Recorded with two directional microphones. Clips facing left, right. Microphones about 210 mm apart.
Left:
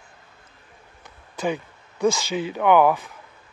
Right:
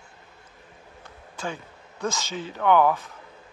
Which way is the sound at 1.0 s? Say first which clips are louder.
Left 8 dB; 15° left (ahead or behind).